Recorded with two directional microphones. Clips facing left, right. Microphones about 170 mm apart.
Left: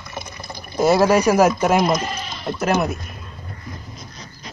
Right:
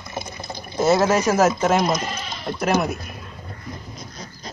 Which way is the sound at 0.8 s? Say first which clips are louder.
Left 2 dB; 15° left (ahead or behind).